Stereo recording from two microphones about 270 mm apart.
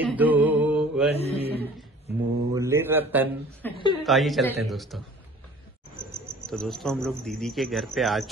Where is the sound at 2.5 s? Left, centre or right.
Centre.